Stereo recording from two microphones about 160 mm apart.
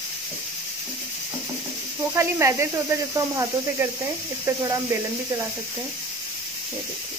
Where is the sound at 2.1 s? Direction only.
20° right (ahead or behind).